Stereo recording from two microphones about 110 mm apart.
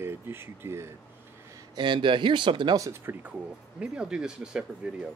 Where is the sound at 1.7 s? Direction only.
45° right (ahead or behind).